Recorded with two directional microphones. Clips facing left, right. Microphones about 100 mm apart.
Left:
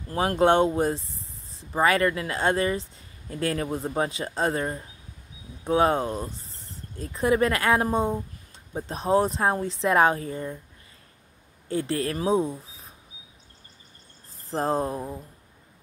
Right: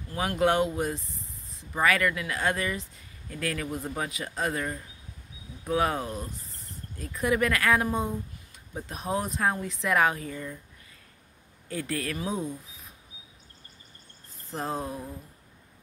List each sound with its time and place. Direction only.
0.1 s speech: 35° left (ahead or behind)
11.7 s speech: 30° left (ahead or behind)
14.5 s speech: 35° left (ahead or behind)